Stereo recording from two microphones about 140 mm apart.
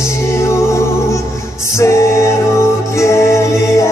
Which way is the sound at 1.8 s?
20° left (ahead or behind).